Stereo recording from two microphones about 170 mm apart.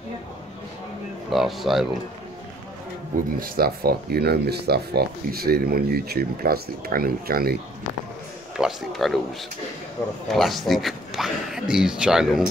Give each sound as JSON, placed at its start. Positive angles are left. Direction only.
{"t": 1.3, "sound": "speech", "side_deg": 0}
{"t": 3.3, "sound": "speech", "side_deg": -60}
{"t": 8.5, "sound": "speech", "side_deg": 0}
{"t": 10.3, "sound": "speech", "side_deg": 0}